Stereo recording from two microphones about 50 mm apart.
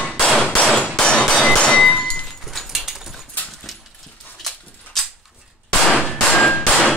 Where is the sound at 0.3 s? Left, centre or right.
Centre.